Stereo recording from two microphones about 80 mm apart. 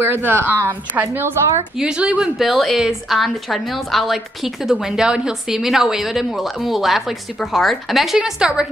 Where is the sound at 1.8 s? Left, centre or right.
Centre.